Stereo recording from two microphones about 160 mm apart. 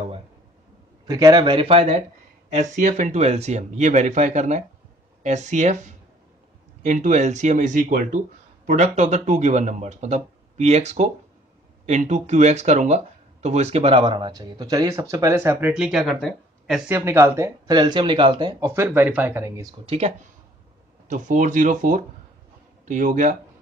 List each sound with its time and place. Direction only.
1.0 s speech: 25° right (ahead or behind)
2.6 s speech: 50° right (ahead or behind); by 15.7 s 15° right (ahead or behind)
15.7 s speech: 5° right (ahead or behind)
16.9 s speech: 15° right (ahead or behind)
18.7 s speech: 15° right (ahead or behind)
19.9 s speech: 45° right (ahead or behind)